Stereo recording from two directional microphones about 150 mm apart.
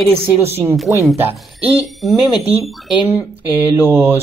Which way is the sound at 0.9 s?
10° right (ahead or behind).